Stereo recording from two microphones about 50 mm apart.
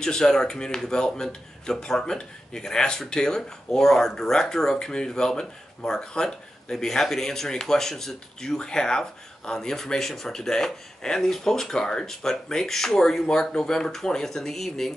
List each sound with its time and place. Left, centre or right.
0.0 s speech: centre